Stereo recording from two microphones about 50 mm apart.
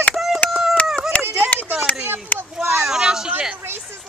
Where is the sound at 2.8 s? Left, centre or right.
Centre.